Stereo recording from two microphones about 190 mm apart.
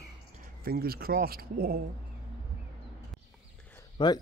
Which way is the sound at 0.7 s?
55° right (ahead or behind).